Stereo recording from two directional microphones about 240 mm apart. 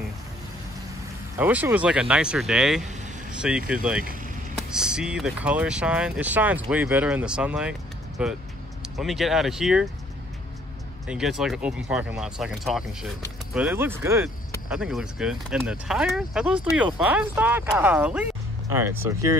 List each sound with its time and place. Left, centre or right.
1.4 s speech: centre
4.0 s vehicle: right
4.6 s speech: centre
11.1 s speech: centre